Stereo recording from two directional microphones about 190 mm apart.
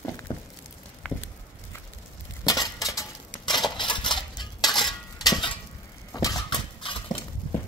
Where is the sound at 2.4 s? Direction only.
20° left (ahead or behind).